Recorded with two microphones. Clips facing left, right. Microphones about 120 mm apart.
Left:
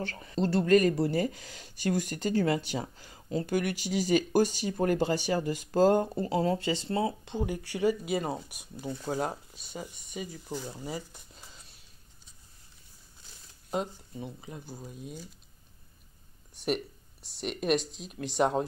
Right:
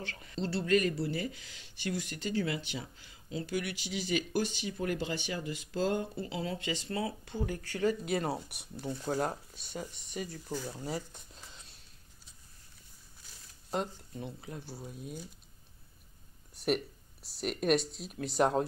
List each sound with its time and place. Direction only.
0.0 s speech: 40° left (ahead or behind); by 10.6 s 5° left (ahead or behind)
10.7 s a sound: 5° left (ahead or behind)
13.7 s speech: 5° left (ahead or behind)
16.5 s speech: centre (ahead or behind)